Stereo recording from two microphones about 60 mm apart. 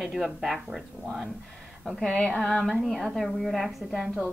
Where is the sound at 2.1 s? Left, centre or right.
Centre.